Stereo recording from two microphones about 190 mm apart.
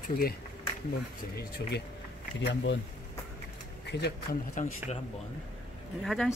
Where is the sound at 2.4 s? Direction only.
70° left (ahead or behind).